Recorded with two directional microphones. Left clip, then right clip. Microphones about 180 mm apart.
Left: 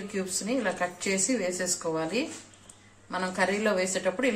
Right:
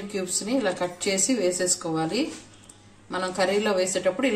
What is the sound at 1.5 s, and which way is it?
Speech, 25° left (ahead or behind).